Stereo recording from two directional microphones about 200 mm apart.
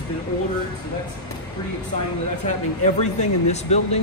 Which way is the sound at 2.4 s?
35° left (ahead or behind).